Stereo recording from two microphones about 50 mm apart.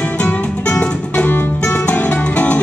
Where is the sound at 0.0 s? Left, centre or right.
Left.